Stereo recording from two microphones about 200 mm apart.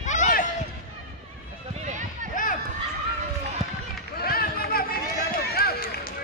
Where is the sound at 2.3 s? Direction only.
40° left (ahead or behind).